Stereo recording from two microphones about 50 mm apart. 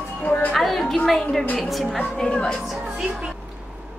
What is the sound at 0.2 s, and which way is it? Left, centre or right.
Music, left.